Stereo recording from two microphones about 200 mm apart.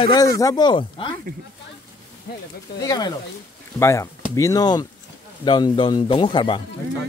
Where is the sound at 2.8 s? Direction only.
20° left (ahead or behind).